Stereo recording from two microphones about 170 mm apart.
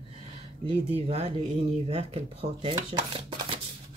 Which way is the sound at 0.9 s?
35° right (ahead or behind).